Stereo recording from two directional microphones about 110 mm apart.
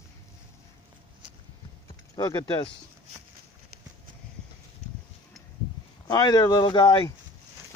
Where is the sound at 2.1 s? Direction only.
35° left (ahead or behind).